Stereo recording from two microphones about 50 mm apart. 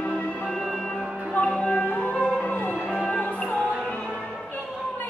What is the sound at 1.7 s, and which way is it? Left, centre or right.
Music, left.